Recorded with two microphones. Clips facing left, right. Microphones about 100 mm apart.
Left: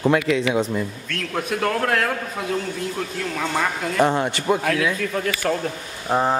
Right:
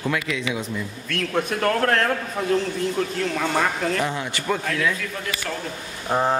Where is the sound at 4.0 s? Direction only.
40° left (ahead or behind).